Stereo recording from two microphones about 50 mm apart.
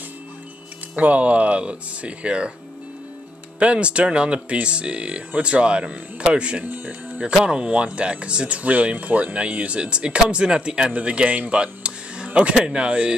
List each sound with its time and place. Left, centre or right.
0.9 s speech: right
3.5 s speech: right
6.6 s speech: right